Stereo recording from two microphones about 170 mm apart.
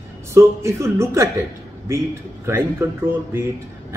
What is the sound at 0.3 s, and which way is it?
Speech, 15° right (ahead or behind).